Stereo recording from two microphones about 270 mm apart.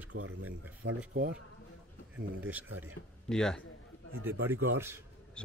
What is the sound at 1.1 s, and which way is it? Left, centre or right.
Speech, right.